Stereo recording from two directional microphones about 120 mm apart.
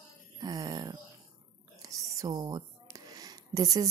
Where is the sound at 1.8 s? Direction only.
30° right (ahead or behind).